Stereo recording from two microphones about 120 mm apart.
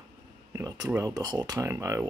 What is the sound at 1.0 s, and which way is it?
Speech, 30° right (ahead or behind).